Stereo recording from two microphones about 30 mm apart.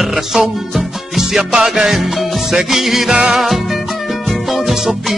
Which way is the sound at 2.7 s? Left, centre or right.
Centre.